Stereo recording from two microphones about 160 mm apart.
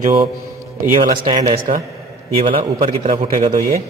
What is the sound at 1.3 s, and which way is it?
Speech, 45° right (ahead or behind).